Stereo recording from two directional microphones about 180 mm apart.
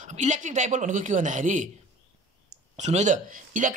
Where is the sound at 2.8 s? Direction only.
40° right (ahead or behind).